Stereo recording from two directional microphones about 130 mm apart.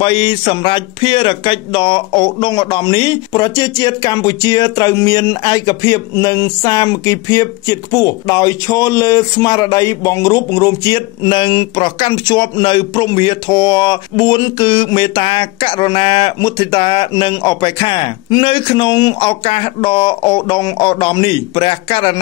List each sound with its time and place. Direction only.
0.0 s speech: 45° left (ahead or behind)